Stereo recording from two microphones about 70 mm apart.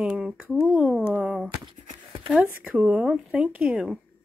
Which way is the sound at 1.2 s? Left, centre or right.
Centre.